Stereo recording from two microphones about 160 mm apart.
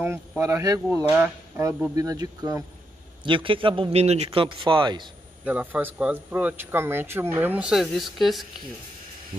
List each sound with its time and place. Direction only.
0.4 s speech: 20° right (ahead or behind)
3.3 s a man's voice: 30° right (ahead or behind)
5.4 s a man's voice: 10° right (ahead or behind)